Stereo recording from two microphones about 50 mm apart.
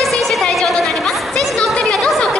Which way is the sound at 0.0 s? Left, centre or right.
Centre.